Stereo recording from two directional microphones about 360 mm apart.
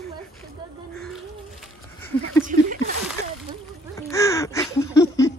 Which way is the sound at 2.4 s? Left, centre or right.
Right.